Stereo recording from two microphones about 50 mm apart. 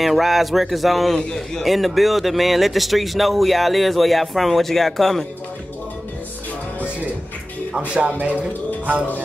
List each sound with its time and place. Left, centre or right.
0.0 s speech: centre
8.2 s speech: right